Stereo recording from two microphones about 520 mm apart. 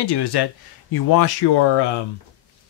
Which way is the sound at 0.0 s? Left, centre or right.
Left.